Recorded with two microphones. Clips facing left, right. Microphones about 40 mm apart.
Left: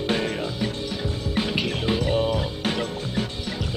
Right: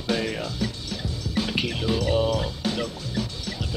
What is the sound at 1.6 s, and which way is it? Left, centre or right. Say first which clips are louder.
Music: left 1 dB; left.